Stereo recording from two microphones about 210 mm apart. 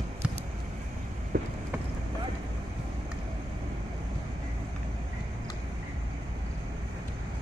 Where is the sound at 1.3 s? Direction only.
40° right (ahead or behind).